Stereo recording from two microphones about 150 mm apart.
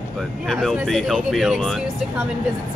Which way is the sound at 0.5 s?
Centre (ahead or behind).